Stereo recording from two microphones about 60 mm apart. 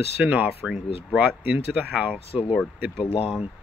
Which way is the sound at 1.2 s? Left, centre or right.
Right.